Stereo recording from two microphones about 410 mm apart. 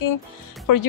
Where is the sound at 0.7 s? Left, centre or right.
Left.